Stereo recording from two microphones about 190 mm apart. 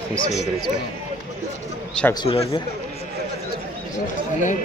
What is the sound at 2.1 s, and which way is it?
Speech, 25° left (ahead or behind).